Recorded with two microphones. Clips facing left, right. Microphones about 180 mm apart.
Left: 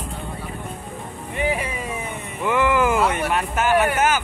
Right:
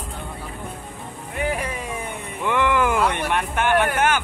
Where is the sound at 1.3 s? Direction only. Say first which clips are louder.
Left 1 dB; 5° left (ahead or behind).